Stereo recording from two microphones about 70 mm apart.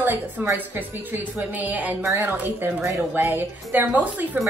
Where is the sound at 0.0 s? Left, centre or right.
Right.